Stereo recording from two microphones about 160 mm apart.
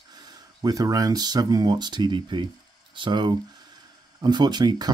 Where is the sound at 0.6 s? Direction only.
25° right (ahead or behind).